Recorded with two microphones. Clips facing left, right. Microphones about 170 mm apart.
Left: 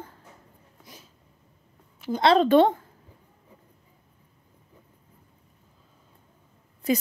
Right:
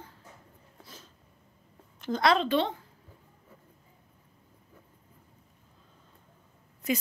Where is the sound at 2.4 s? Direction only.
50° left (ahead or behind).